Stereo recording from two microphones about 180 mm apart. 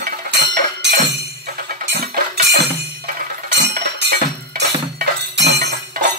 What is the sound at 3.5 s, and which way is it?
Music, 75° right (ahead or behind).